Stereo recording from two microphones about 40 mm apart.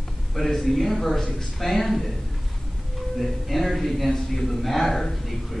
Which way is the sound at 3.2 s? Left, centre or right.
Centre.